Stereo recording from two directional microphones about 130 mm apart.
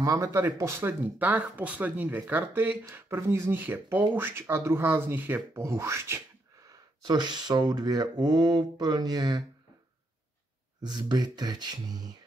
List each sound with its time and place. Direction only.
0.0 s speech: 25° right (ahead or behind)
6.7 s speech: 35° right (ahead or behind)
10.8 s speech: 35° right (ahead or behind)